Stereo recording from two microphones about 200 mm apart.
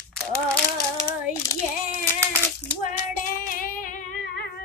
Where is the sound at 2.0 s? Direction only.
10° left (ahead or behind).